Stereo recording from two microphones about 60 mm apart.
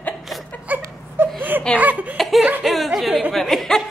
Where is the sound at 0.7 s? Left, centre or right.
Right.